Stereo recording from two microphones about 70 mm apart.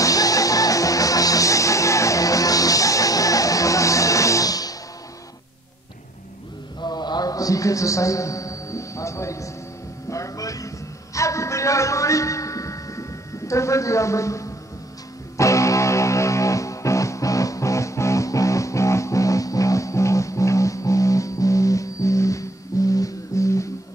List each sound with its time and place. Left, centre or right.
0.0 s music: left
6.8 s a sound: left
10.0 s speech: left
11.1 s a sound: left
13.5 s a man's voice: left
15.3 s music: left